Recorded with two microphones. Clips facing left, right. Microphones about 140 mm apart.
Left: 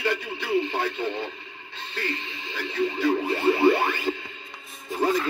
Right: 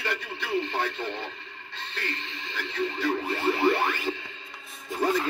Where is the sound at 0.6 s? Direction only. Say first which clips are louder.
Left 3 dB; 10° left (ahead or behind).